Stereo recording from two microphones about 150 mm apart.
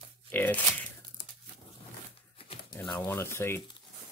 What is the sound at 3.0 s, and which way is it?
Speech, 15° left (ahead or behind).